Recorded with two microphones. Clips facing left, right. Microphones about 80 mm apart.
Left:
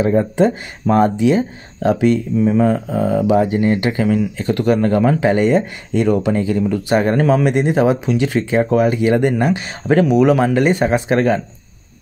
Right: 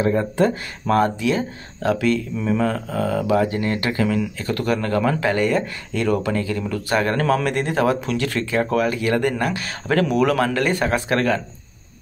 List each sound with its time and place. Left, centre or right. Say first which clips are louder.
0.0 s speech: left 4 dB; left